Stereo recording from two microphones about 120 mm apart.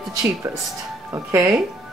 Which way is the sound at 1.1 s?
25° right (ahead or behind).